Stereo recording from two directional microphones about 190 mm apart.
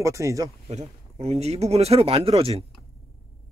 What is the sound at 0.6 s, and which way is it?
Speech, 35° right (ahead or behind).